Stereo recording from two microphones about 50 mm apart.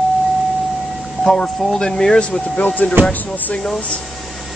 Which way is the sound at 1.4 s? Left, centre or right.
Centre.